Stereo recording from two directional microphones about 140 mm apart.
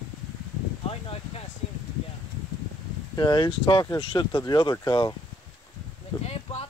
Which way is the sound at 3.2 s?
30° left (ahead or behind).